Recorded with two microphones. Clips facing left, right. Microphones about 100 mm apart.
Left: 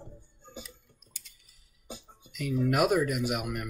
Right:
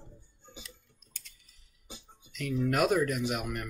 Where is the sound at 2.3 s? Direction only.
5° left (ahead or behind).